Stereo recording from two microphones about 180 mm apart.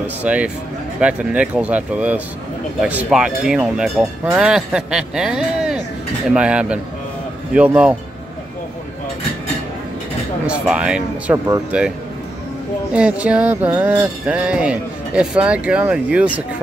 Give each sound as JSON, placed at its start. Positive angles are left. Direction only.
{"t": 0.0, "sound": "speech", "side_deg": -10}
{"t": 1.0, "sound": "music", "side_deg": -5}
{"t": 2.8, "sound": "speech", "side_deg": -5}
{"t": 7.5, "sound": "music", "side_deg": -5}
{"t": 10.7, "sound": "speech", "side_deg": -5}
{"t": 11.2, "sound": "music", "side_deg": -15}
{"t": 12.9, "sound": "music", "side_deg": -5}